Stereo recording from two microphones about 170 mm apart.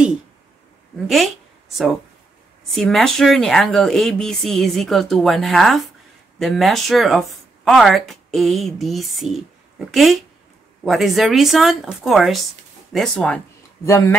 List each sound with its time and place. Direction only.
1.0 s speech: centre (ahead or behind)
2.7 s speech: centre (ahead or behind)
13.8 s speech: 15° left (ahead or behind)